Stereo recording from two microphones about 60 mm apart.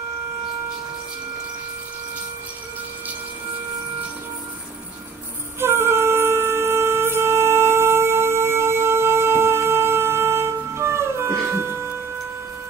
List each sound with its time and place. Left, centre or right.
5.6 s wind instrument: right